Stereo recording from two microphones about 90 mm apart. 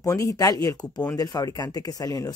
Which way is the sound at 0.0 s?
35° left (ahead or behind).